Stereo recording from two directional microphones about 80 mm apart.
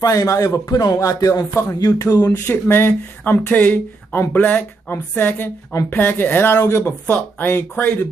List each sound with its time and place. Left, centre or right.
0.0 s a man's voice: left
2.1 s a man's voice: left